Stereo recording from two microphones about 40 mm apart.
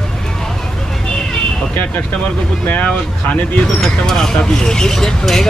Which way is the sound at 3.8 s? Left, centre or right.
Centre.